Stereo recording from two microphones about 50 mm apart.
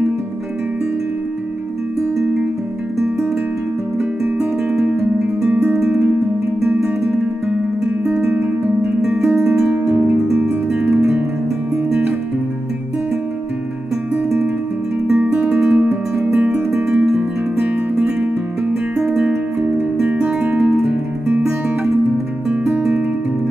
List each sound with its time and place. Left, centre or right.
8.3 s music: right
10.1 s music: centre
15.1 s music: right
16.7 s music: centre
19.2 s music: right